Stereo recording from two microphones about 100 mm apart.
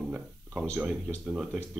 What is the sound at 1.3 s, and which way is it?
Speech, centre (ahead or behind).